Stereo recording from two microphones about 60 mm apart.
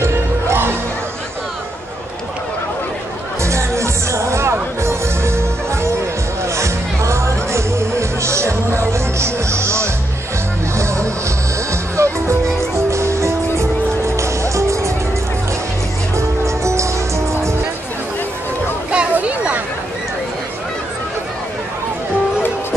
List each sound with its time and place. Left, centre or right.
0.0 s music: right
3.4 s music: right
16.4 s music: right
18.9 s a sound: centre